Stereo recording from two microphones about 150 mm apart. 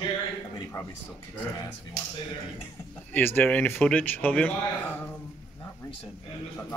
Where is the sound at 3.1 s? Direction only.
15° left (ahead or behind).